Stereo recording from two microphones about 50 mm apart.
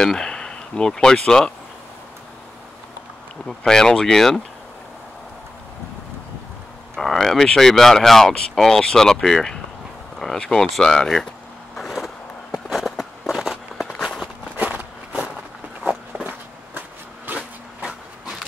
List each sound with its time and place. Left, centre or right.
0.0 s speech: centre
3.4 s speech: centre
7.0 s speech: centre
12.6 s a sound: centre
13.4 s walk: centre
14.6 s walk: right
17.3 s a sound: right